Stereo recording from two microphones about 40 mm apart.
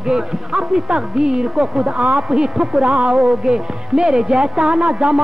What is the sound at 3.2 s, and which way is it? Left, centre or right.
Music, centre.